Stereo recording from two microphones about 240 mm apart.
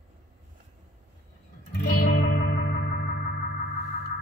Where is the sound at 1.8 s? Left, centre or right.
Left.